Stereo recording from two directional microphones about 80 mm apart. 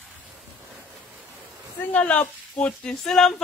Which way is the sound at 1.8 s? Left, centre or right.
Centre.